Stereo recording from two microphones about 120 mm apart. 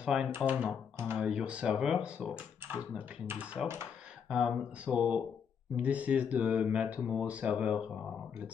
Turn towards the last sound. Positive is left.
turn(degrees=-10)  # may be behind; listen again after turning